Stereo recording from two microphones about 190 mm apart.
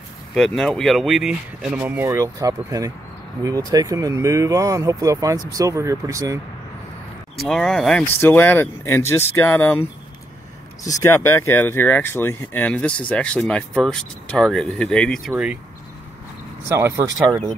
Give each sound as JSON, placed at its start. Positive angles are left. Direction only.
{"t": 0.3, "sound": "speech", "side_deg": 5}
{"t": 7.3, "sound": "speech", "side_deg": 5}
{"t": 10.9, "sound": "speech", "side_deg": 15}
{"t": 16.6, "sound": "speech", "side_deg": -15}